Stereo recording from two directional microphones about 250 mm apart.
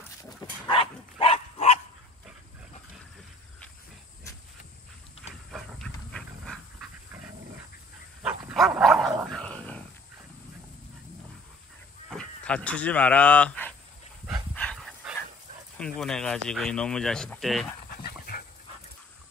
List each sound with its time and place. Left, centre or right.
0.2 s dog: left
5.5 s dog: centre
8.2 s dog: centre
12.1 s speech: centre
14.5 s dog: centre
15.8 s speech: centre
17.8 s dog: left